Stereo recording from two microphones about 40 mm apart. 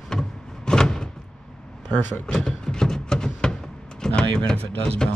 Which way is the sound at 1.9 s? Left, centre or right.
Left.